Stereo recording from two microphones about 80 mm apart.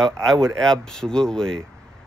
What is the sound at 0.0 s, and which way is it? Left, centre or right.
Speech, centre.